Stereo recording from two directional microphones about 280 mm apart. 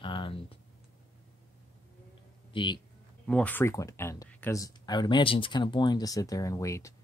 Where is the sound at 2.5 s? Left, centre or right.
Centre.